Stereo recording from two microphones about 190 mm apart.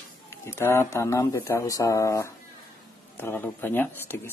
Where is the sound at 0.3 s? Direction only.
15° left (ahead or behind).